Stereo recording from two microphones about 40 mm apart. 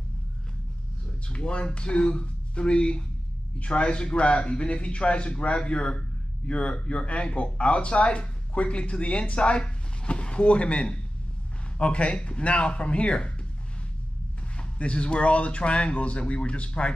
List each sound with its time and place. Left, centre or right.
1.2 s a man's voice: left
14.6 s speech: left